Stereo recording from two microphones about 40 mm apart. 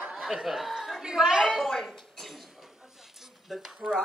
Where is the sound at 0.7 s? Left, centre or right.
Centre.